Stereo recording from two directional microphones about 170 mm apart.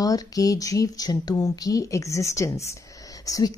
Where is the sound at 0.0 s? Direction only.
20° left (ahead or behind).